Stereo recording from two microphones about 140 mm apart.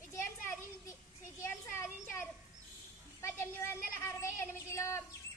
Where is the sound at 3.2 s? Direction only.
20° left (ahead or behind).